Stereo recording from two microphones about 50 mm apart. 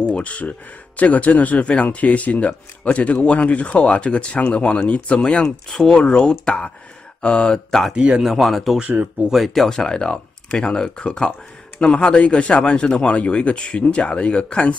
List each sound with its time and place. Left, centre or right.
0.0 s speech: left
7.9 s speech: right
8.2 s speech: centre
9.8 s speech: centre